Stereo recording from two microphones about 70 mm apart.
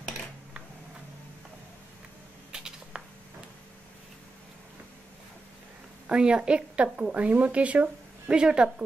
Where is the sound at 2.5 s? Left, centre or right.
Centre.